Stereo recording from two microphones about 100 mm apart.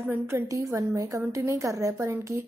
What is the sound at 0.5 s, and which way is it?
A woman's voice, 30° right (ahead or behind).